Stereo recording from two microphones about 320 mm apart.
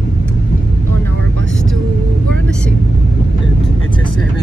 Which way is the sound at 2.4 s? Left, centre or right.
Centre.